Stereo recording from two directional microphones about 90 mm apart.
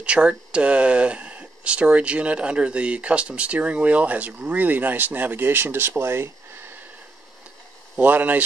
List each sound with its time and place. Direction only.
0.0 s speech: 10° right (ahead or behind)
8.0 s speech: 20° right (ahead or behind)